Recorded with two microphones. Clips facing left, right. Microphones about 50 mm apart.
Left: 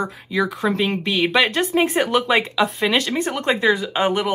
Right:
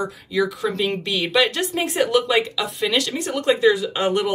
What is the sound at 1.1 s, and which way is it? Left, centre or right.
Speech, left.